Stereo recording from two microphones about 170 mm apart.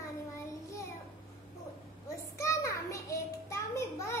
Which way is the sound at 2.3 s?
15° left (ahead or behind).